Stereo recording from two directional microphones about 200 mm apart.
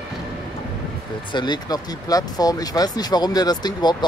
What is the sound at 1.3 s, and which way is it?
Speech, 20° left (ahead or behind).